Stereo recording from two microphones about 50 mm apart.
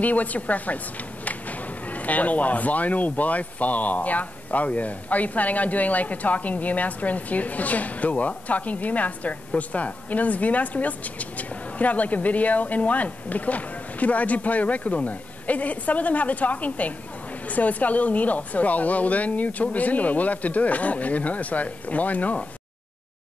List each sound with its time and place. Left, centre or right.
0.0 s speech: left
1.9 s speech: left